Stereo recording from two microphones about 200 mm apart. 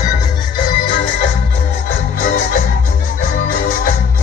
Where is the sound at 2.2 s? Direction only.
45° left (ahead or behind).